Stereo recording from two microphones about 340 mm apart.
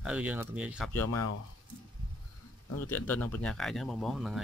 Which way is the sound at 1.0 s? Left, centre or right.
Left.